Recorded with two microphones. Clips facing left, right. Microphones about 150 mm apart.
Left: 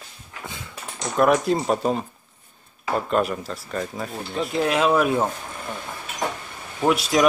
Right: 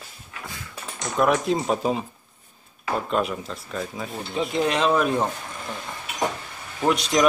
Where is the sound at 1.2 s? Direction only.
Centre (ahead or behind).